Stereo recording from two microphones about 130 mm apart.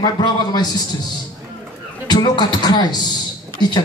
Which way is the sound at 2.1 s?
30° left (ahead or behind).